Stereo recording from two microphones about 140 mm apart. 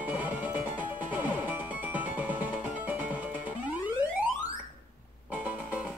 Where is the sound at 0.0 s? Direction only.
10° right (ahead or behind).